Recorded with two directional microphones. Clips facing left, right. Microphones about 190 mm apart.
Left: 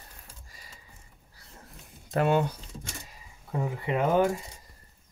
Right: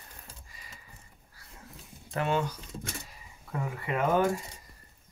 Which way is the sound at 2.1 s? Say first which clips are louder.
Left 5 dB; 50° left (ahead or behind).